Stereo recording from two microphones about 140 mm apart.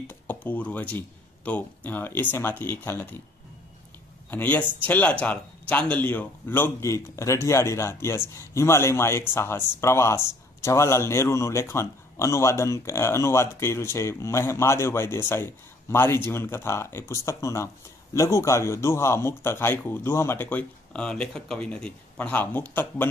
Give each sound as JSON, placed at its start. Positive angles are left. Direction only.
{"t": 0.1, "sound": "speech", "side_deg": 15}
{"t": 4.3, "sound": "speech", "side_deg": 10}